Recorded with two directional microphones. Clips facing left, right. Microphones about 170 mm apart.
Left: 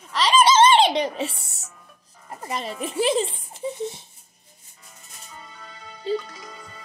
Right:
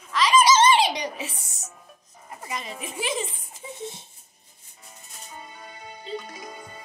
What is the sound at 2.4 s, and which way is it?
A child's voice, 35° left (ahead or behind).